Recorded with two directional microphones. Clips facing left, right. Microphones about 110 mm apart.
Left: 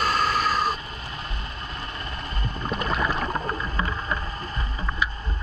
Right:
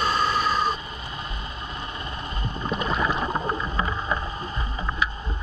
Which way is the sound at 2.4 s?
5° right (ahead or behind).